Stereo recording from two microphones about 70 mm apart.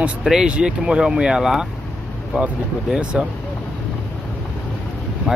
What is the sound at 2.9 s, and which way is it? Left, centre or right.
Speech, centre.